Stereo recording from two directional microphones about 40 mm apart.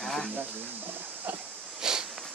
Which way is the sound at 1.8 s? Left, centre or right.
Centre.